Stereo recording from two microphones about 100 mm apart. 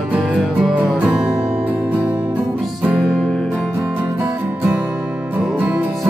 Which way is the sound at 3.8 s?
20° right (ahead or behind).